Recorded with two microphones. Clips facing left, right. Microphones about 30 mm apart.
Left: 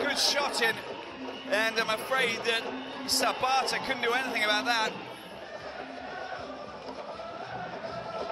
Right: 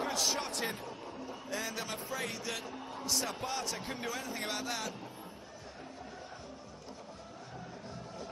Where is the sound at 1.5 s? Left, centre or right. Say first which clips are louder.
Left 12 dB; left.